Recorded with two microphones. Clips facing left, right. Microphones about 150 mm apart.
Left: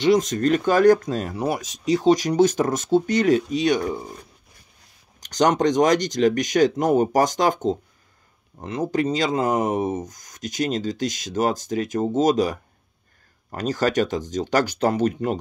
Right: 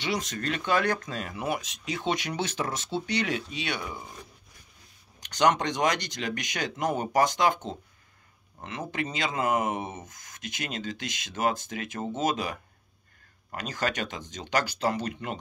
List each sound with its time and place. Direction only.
0.0 s speech: 45° left (ahead or behind)
5.2 s speech: 40° left (ahead or behind)